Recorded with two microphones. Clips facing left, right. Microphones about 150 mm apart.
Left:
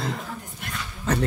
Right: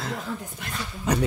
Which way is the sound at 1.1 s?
15° right (ahead or behind).